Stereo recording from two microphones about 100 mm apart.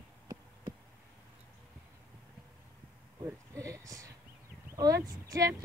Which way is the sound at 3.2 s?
30° right (ahead or behind).